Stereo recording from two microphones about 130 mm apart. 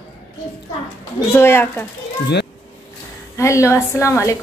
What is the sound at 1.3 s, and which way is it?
Speech, 20° left (ahead or behind).